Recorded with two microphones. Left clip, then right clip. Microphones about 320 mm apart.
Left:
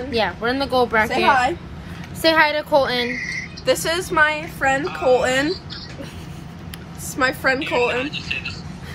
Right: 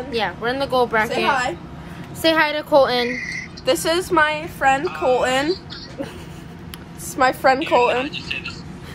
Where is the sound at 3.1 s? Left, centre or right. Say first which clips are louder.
Even; right.